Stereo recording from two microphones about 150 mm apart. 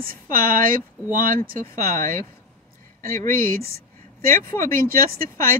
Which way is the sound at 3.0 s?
70° right (ahead or behind).